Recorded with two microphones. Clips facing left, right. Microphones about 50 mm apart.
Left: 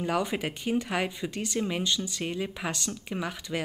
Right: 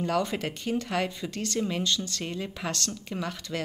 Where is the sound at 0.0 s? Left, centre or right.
Centre.